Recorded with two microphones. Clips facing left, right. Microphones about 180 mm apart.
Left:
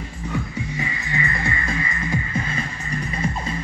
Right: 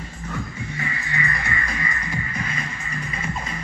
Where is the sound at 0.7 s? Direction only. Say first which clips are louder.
Left 1 dB; 20° left (ahead or behind).